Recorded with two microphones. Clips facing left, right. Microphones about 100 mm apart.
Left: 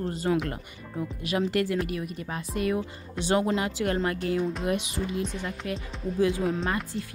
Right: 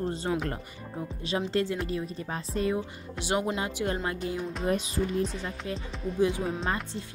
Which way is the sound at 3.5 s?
20° right (ahead or behind).